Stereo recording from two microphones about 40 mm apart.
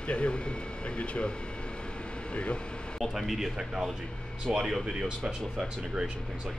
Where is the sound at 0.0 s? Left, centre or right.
Left.